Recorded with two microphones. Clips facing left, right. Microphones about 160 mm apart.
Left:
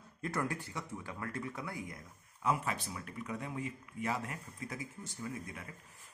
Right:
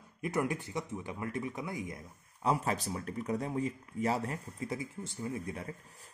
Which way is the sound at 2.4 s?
35° right (ahead or behind).